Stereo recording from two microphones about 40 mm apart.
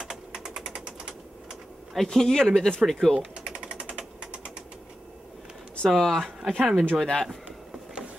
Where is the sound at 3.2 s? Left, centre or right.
Right.